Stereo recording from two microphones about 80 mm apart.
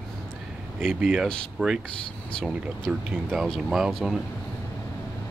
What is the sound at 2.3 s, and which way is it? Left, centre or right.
Speech, centre.